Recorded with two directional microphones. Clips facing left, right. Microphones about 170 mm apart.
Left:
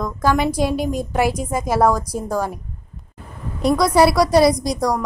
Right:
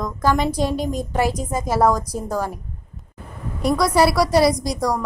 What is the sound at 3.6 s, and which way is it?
A woman's voice, 20° left (ahead or behind).